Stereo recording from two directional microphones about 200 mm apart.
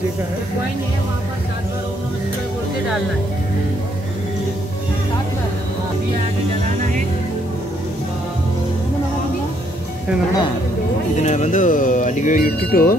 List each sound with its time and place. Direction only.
11.2 s speech: 35° left (ahead or behind)